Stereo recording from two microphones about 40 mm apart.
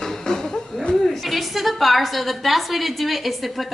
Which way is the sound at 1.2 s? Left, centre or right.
Centre.